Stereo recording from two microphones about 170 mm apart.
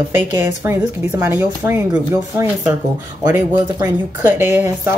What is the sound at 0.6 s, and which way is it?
Speech, 20° right (ahead or behind).